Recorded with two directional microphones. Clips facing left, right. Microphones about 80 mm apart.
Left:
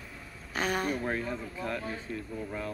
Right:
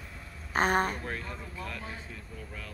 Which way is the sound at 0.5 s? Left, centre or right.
Right.